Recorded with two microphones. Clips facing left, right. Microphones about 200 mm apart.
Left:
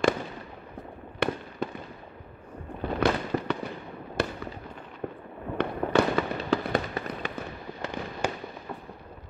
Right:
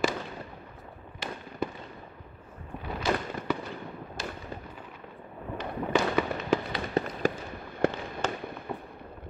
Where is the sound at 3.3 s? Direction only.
55° left (ahead or behind).